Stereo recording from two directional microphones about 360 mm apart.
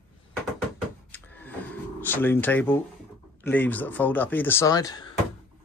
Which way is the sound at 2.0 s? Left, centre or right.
Centre.